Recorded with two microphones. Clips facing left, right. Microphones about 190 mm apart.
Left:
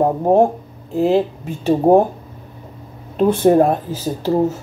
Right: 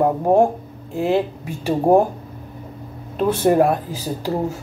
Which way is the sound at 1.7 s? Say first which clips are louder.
Left 3 dB; 20° left (ahead or behind).